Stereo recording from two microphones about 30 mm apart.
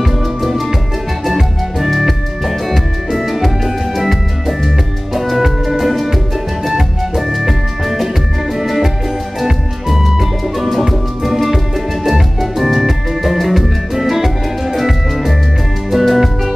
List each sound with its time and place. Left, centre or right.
0.0 s music: centre
1.9 s music: centre
7.2 s music: centre
9.9 s music: centre